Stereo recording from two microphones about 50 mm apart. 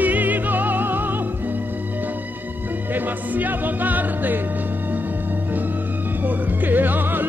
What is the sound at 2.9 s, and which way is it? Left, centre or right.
Music, right.